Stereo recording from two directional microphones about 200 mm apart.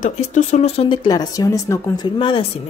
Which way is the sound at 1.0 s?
20° left (ahead or behind).